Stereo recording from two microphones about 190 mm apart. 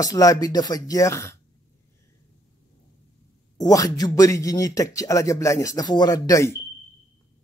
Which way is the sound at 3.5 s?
20° left (ahead or behind).